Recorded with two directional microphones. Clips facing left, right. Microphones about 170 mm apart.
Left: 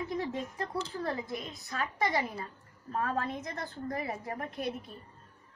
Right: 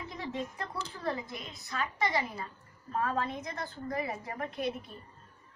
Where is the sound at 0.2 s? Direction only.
45° left (ahead or behind).